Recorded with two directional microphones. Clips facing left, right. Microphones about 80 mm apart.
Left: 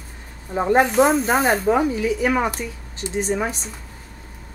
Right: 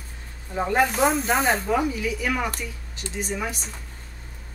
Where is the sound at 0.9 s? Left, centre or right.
Centre.